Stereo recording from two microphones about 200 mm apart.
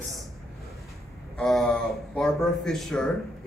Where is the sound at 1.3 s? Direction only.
Centre (ahead or behind).